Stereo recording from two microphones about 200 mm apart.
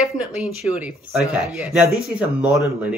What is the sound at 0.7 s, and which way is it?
Speech, 5° right (ahead or behind).